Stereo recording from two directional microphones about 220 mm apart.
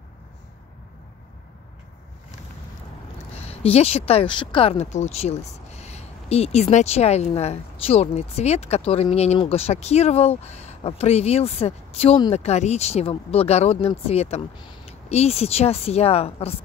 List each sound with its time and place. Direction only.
3.3 s speech: 30° left (ahead or behind)